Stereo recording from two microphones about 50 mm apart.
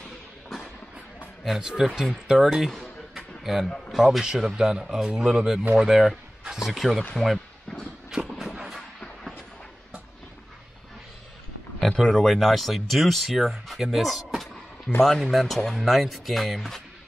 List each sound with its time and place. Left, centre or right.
1.4 s speech: centre
3.2 s a sound: centre
3.9 s a man's voice: centre
6.4 s a sound: centre
6.7 s speech: centre
8.1 s vehicle: centre
12.0 s speech: centre
15.0 s speech: centre